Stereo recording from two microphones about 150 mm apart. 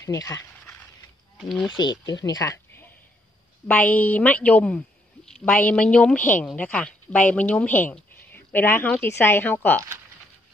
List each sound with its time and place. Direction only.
0.0 s a sound: 20° left (ahead or behind)
1.5 s speech: centre (ahead or behind)
1.8 s speech: 30° left (ahead or behind); by 9.8 s 10° left (ahead or behind)